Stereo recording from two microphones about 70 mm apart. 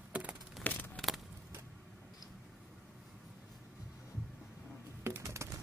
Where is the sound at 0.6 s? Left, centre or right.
Left.